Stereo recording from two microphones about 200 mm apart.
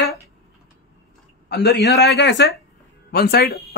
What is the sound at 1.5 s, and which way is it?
A man's voice, 55° left (ahead or behind).